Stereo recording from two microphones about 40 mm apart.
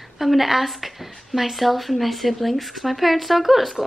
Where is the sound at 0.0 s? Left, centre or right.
Centre.